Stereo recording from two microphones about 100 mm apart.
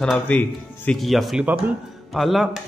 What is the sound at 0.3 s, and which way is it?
Speech, 15° left (ahead or behind).